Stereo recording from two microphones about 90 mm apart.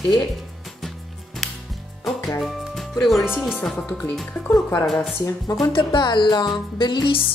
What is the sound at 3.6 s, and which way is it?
Speech, 5° left (ahead or behind).